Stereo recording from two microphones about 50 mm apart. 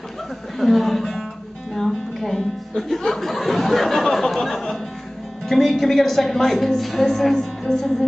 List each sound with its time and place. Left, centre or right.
0.6 s speech: centre
1.8 s music: centre
5.5 s a woman's voice: centre